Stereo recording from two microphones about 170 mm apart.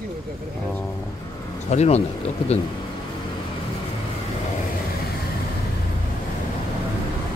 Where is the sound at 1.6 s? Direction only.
40° left (ahead or behind).